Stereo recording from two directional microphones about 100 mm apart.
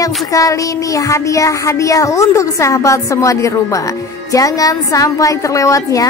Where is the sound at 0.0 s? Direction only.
35° left (ahead or behind).